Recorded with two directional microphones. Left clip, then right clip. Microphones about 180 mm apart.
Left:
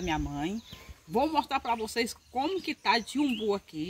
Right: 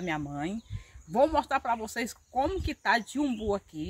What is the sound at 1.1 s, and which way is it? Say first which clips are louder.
Speech: right 3 dB; 10° right (ahead or behind).